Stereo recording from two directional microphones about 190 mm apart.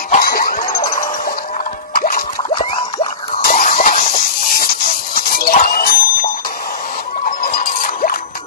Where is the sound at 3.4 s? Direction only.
45° left (ahead or behind).